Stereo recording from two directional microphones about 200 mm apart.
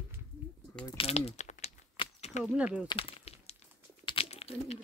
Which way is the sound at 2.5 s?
5° right (ahead or behind).